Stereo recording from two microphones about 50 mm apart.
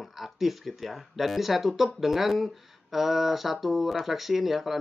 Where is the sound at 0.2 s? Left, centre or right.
Centre.